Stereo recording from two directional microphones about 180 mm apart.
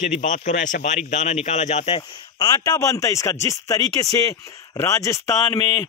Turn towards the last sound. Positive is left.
turn(degrees=15)  # may be behind; listen again after turning